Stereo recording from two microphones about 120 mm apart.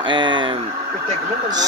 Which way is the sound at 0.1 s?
40° right (ahead or behind).